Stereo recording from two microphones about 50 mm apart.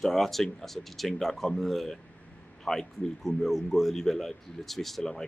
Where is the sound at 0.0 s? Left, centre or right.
Centre.